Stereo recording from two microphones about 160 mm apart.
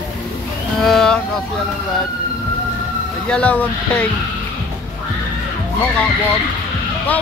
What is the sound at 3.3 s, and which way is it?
Speech, 10° left (ahead or behind).